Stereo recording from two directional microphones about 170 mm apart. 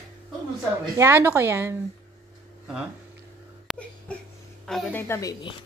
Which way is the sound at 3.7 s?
5° right (ahead or behind).